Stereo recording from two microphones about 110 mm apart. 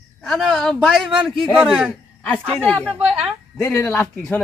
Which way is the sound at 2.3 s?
10° left (ahead or behind).